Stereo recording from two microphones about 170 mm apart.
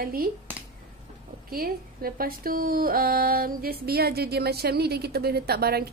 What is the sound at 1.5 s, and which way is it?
Speech, 60° right (ahead or behind).